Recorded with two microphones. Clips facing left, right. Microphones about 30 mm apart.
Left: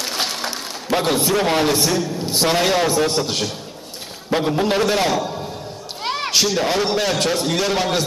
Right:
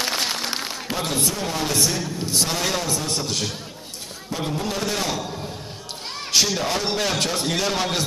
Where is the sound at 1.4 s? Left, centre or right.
Left.